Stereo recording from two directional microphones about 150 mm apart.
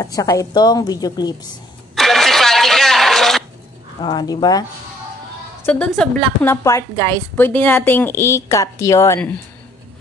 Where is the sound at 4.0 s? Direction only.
30° left (ahead or behind).